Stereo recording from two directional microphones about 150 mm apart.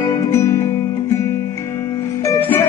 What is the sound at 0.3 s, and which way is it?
Music, 20° left (ahead or behind).